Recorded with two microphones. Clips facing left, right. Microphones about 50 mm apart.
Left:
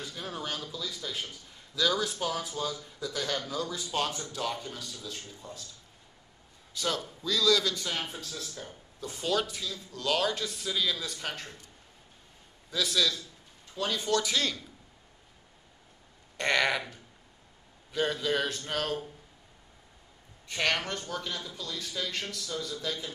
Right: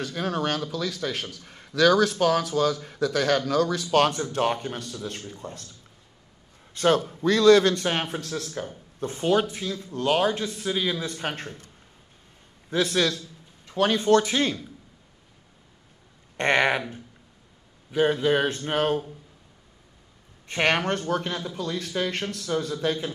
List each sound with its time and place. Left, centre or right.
0.0 s a man's voice: right
6.7 s a man's voice: right
9.0 s speech: right
16.3 s speech: right
17.9 s speech: right
20.4 s a man's voice: right